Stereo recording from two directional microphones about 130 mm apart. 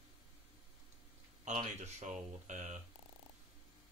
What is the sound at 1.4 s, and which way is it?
Speech, 65° right (ahead or behind).